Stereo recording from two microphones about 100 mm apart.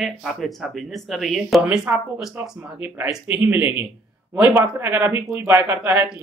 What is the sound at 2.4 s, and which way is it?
Speech, 20° right (ahead or behind).